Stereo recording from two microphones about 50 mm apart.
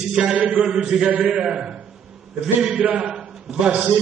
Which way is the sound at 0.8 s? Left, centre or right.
Centre.